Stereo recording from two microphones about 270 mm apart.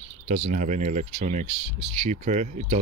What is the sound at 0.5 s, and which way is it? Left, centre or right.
Speech, right.